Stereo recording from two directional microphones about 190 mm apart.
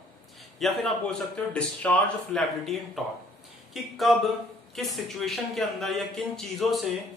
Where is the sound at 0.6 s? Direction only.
Centre (ahead or behind).